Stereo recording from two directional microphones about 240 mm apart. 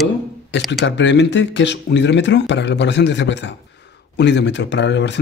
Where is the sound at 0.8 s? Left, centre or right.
Left.